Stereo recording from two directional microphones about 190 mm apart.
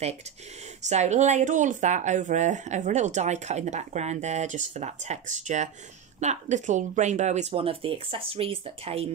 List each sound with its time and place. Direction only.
0.8 s speech: 35° right (ahead or behind)